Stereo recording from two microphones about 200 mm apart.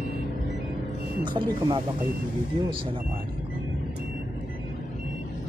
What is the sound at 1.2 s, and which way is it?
Speech, 25° right (ahead or behind).